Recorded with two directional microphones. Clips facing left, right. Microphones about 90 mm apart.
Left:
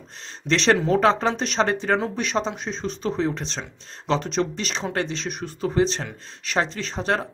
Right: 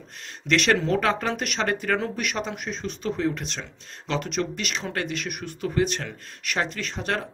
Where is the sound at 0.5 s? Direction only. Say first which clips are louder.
Left 2 dB; 30° left (ahead or behind).